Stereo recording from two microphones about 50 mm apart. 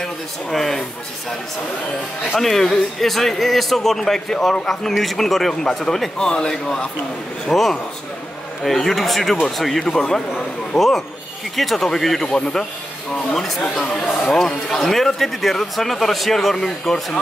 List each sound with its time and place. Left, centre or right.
0.0 s speech: centre
2.3 s speech: centre
6.1 s a man's voice: centre
12.3 s speech: centre
13.1 s speech: centre